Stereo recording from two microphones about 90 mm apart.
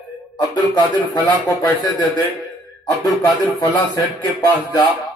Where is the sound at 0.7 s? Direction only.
55° left (ahead or behind).